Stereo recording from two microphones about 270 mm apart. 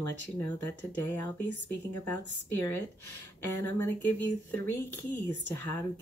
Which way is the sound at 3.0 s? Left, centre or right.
Left.